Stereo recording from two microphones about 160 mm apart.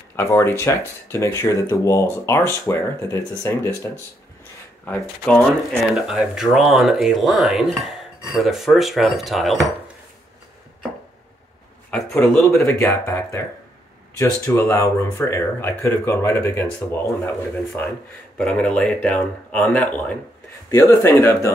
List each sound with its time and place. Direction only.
0.1 s speech: 15° left (ahead or behind)
4.8 s speech: 5° left (ahead or behind)
12.4 s speech: 15° left (ahead or behind)